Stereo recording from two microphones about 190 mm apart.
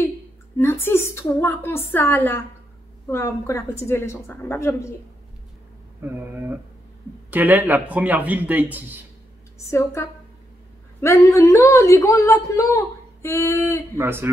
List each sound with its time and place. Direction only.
0.6 s speech: 10° left (ahead or behind)
6.0 s speech: 10° right (ahead or behind)
9.7 s speech: 15° left (ahead or behind)
13.9 s speech: 10° right (ahead or behind)